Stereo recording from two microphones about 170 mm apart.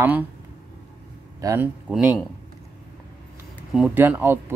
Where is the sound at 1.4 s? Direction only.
20° right (ahead or behind).